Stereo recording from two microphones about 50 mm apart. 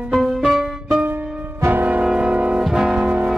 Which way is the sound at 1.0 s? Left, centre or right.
Right.